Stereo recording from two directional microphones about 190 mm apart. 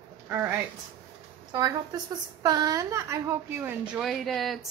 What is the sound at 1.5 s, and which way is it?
A woman's voice, 20° right (ahead or behind).